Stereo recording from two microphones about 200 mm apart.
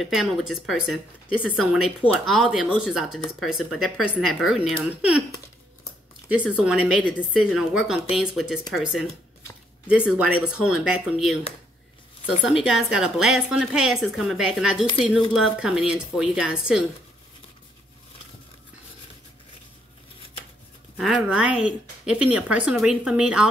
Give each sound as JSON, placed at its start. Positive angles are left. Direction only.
{"t": 0.0, "sound": "speech", "side_deg": 0}
{"t": 6.6, "sound": "speech", "side_deg": -5}
{"t": 12.4, "sound": "speech", "side_deg": 0}
{"t": 21.0, "sound": "speech", "side_deg": -5}